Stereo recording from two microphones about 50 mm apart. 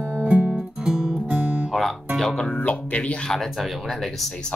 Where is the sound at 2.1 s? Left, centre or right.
Centre.